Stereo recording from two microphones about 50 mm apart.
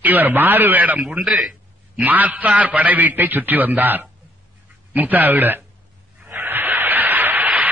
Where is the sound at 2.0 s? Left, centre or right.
Right.